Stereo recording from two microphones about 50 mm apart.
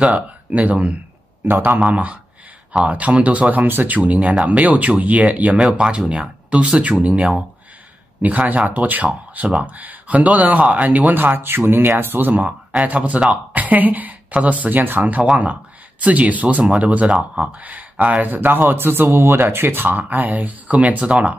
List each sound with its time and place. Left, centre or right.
0.5 s speech: right
1.5 s speech: right
1.9 s speech: right
5.6 s speech: centre; by 12.4 s right
12.4 s speech: right